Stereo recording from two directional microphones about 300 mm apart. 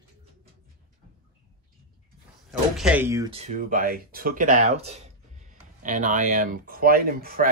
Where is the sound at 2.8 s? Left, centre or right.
Centre; by 7.4 s right.